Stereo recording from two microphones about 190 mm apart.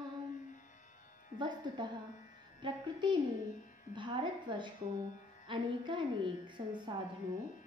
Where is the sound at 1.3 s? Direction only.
25° right (ahead or behind).